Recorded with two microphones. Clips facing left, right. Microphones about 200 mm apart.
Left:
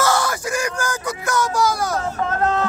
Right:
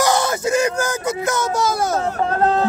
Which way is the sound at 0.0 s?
20° right (ahead or behind).